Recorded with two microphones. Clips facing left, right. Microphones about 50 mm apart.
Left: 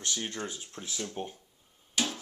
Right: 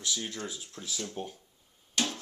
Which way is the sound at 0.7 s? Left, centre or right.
Left.